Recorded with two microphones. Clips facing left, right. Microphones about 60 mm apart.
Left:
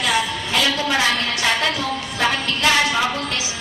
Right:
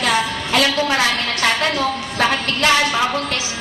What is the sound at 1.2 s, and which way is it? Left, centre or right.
Music, right.